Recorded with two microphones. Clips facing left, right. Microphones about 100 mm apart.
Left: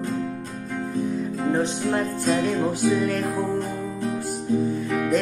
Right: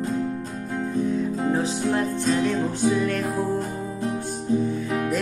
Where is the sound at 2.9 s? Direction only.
Centre (ahead or behind).